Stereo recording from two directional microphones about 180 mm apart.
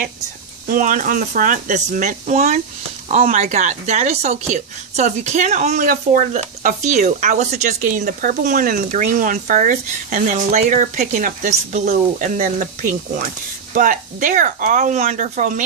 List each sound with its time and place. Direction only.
0.7 s speech: 45° right (ahead or behind)
13.7 s speech: 50° right (ahead or behind)